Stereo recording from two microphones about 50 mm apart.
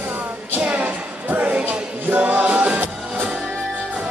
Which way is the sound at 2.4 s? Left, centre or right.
Right.